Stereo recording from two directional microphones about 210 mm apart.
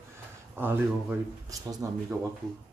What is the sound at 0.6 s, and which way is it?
Speech, 10° right (ahead or behind).